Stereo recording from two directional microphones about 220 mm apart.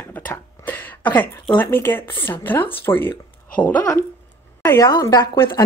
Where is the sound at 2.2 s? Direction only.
10° left (ahead or behind).